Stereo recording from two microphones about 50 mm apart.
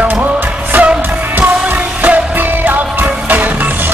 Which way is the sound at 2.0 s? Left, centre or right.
Right.